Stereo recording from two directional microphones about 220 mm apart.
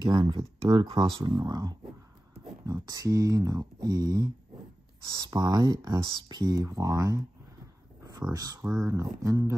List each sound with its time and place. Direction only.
0.0 s speech: 20° right (ahead or behind)